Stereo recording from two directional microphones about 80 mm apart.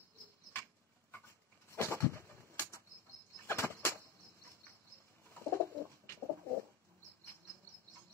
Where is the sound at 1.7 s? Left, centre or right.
Left.